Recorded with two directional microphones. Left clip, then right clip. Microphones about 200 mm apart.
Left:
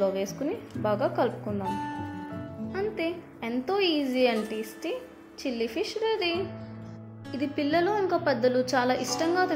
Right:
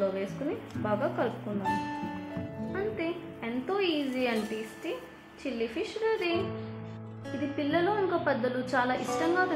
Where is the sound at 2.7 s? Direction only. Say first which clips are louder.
Left 3 dB; 30° left (ahead or behind).